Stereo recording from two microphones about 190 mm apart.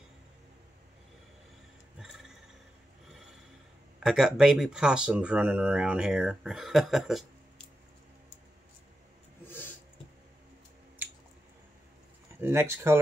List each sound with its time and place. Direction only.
2.0 s a sound: centre (ahead or behind)
4.0 s speech: centre (ahead or behind)
12.4 s speech: 10° right (ahead or behind)